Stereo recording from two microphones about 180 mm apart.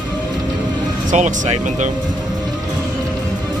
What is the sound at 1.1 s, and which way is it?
Speech, 45° right (ahead or behind).